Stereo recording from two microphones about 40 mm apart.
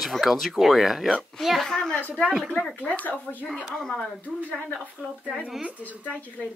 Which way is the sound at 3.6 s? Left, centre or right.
Centre.